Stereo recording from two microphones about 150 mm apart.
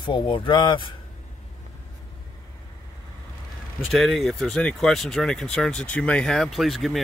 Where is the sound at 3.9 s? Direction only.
Centre (ahead or behind).